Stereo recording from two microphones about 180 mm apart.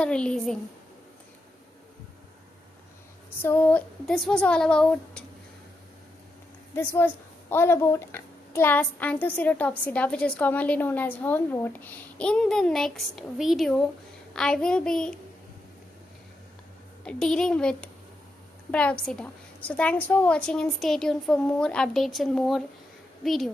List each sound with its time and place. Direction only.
0.0 s a woman's voice: 5° left (ahead or behind)
3.4 s a woman's voice: 10° left (ahead or behind)
6.7 s a woman's voice: 10° left (ahead or behind)
17.0 s a woman's voice: 5° left (ahead or behind)